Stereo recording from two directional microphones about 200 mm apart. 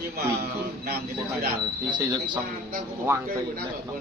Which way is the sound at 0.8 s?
50° right (ahead or behind).